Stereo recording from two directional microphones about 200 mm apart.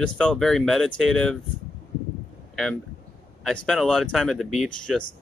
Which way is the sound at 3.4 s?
Centre (ahead or behind).